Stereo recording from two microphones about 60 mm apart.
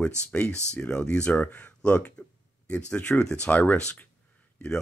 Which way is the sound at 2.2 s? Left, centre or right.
Centre.